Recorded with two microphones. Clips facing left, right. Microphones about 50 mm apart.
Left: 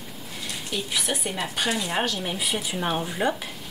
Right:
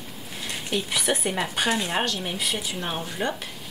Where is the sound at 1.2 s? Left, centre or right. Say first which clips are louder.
Right 2 dB; right.